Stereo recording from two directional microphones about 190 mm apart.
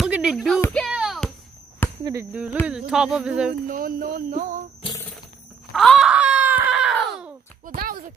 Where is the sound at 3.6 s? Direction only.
45° right (ahead or behind).